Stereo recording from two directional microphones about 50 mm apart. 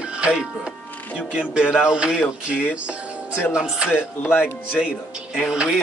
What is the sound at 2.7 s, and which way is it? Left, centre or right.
Music, right.